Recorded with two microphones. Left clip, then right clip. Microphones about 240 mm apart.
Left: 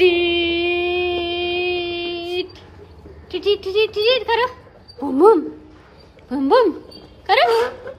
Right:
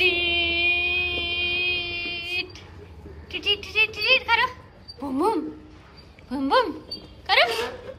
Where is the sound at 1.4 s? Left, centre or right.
Centre.